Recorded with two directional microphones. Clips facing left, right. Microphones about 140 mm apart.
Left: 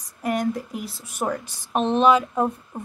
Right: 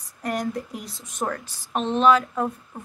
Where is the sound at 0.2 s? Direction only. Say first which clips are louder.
Left 3 dB; centre (ahead or behind).